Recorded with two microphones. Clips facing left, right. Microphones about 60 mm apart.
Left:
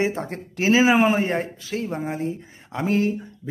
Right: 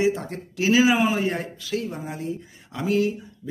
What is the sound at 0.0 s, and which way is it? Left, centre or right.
Speech, left.